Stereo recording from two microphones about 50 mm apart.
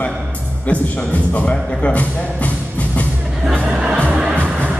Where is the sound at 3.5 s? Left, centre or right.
Centre.